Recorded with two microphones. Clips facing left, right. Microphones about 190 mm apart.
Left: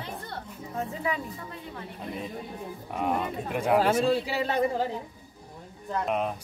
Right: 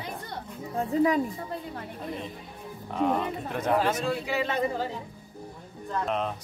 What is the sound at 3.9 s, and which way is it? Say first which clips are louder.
Speech: left 3 dB; 30° left (ahead or behind).